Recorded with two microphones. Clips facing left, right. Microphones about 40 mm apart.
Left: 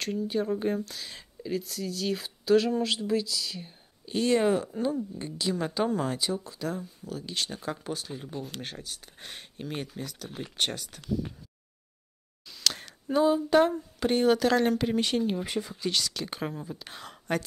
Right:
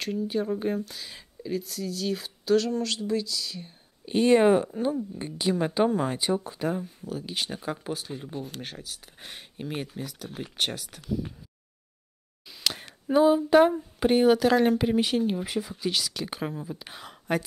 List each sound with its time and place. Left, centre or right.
0.0 s speech: centre
4.0 s speech: right
4.6 s speech: centre
5.1 s speech: right
6.1 s speech: right
6.4 s speech: right
7.1 s speech: centre
12.4 s a sound: centre
15.8 s speech: centre